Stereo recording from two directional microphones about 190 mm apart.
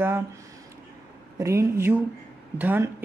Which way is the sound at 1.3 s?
15° right (ahead or behind).